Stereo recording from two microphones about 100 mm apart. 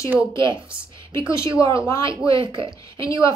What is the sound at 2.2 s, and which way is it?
Speech, 55° right (ahead or behind).